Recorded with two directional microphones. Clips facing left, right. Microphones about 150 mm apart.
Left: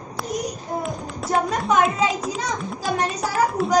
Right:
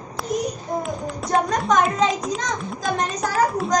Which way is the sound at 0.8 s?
Centre (ahead or behind).